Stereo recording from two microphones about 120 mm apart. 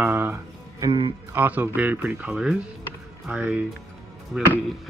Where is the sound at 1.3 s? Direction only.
15° right (ahead or behind).